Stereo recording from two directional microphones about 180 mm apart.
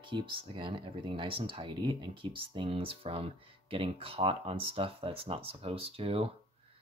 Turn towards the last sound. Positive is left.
turn(degrees=-30)  # may be behind; listen again after turning